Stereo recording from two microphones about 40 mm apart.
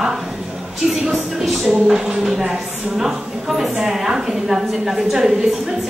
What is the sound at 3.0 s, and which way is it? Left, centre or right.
A woman's voice, centre.